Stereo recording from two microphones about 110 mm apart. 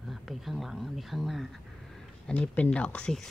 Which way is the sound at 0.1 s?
Centre (ahead or behind).